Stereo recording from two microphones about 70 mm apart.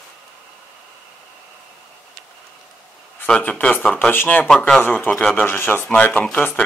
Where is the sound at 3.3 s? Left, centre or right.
Centre.